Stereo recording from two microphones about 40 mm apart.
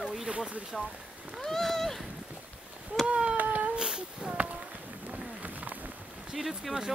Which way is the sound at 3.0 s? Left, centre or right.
Right.